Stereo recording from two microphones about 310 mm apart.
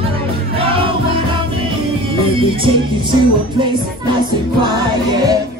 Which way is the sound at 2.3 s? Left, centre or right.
Centre.